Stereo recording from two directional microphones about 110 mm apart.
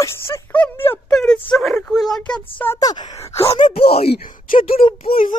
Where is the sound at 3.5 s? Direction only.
50° left (ahead or behind).